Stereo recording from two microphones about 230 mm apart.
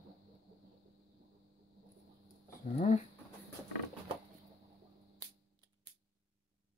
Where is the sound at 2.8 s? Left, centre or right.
Left.